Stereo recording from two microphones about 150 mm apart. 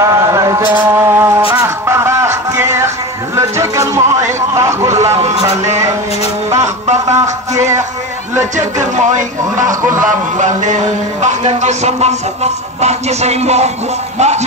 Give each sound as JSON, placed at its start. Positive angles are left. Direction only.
{"t": 0.0, "sound": "mantra", "side_deg": -20}
{"t": 1.5, "sound": "music", "side_deg": -20}
{"t": 3.3, "sound": "a sound", "side_deg": -20}
{"t": 5.1, "sound": "speech", "side_deg": -45}
{"t": 7.1, "sound": "music", "side_deg": -20}
{"t": 8.5, "sound": "speech", "side_deg": -55}